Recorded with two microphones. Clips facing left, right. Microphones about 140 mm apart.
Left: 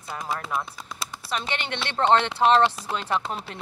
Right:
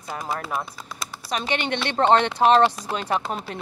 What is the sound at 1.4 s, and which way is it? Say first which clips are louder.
A woman's voice: right 5 dB; 15° right (ahead or behind).